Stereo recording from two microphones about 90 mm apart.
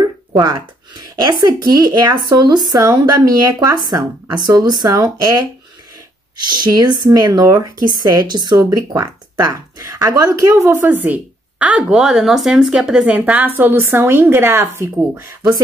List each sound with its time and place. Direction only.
0.3 s speech: 50° right (ahead or behind); by 15.6 s 30° right (ahead or behind)